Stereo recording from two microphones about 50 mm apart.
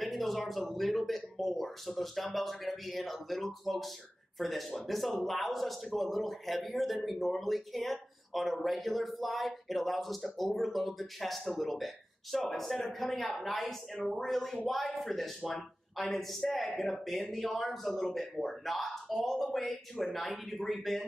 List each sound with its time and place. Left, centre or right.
0.0 s speech: centre